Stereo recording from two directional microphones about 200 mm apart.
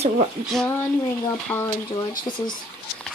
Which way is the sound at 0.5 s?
10° left (ahead or behind).